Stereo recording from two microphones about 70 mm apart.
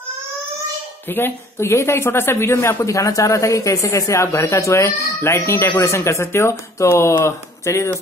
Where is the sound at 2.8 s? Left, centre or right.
Left.